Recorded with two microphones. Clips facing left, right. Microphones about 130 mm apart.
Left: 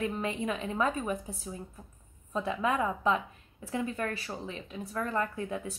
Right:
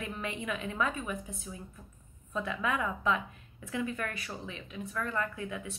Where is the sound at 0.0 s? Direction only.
35° left (ahead or behind).